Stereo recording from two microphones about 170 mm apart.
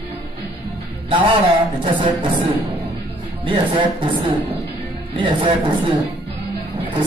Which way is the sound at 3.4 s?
30° right (ahead or behind).